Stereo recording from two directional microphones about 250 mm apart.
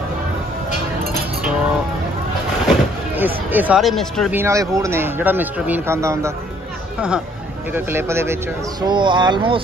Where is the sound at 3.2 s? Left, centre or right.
Centre.